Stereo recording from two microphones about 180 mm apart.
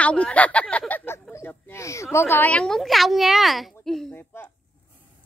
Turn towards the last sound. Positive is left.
turn(degrees=10)  # may be behind; listen again after turning